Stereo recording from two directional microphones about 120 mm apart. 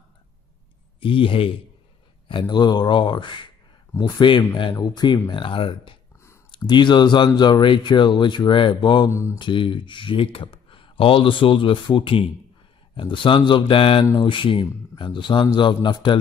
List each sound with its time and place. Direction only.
1.0 s speech: 45° left (ahead or behind)
9.1 s speech: 25° left (ahead or behind)
9.4 s speech: 45° left (ahead or behind)